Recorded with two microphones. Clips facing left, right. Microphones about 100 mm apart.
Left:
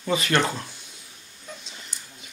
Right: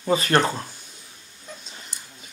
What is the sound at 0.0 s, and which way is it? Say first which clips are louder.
Speech: right 3 dB; 35° right (ahead or behind).